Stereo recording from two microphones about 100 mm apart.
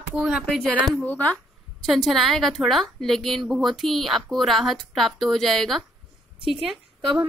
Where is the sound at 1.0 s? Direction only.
15° left (ahead or behind).